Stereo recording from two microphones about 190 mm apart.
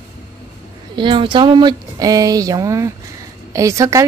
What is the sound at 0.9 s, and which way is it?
A woman's voice, 25° right (ahead or behind).